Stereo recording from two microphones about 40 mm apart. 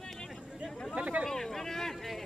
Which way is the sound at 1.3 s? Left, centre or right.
Centre.